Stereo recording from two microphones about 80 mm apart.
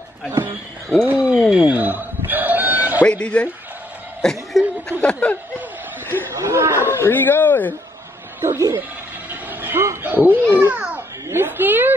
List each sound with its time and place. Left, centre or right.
0.3 s speech: right
1.0 s speech: centre
1.5 s a sound: centre
3.0 s speech: centre
4.2 s chuckle: centre
5.0 s speech: centre
6.3 s speech: right
6.9 s speech: left
8.4 s speech: right
9.3 s vehicle: right
10.0 s a woman's voice: right
10.7 s a sound: centre
11.2 s a woman's voice: right